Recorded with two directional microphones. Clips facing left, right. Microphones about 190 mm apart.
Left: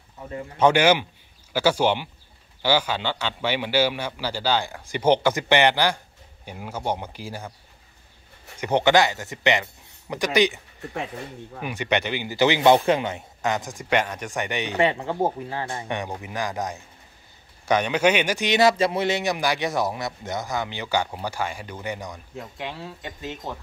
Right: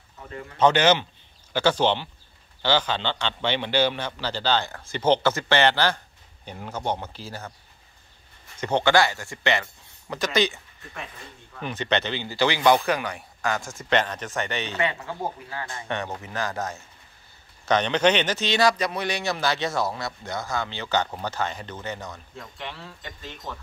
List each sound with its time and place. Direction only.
0.6 s speech: 10° left (ahead or behind)
8.5 s speech: 15° left (ahead or behind)
11.6 s speech: 15° left (ahead or behind)
14.8 s speech: 30° left (ahead or behind)
15.9 s speech: 15° left (ahead or behind)